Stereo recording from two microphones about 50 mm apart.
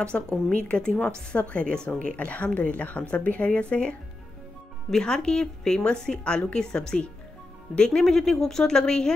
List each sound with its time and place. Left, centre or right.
0.5 s speech: left
4.9 s a woman's voice: centre